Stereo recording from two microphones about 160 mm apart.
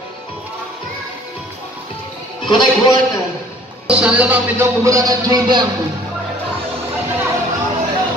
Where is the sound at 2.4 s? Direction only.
30° left (ahead or behind).